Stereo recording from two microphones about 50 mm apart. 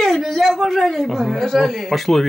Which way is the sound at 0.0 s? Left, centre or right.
Centre.